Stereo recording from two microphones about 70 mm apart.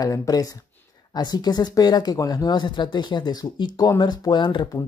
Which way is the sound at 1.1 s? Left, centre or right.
Left.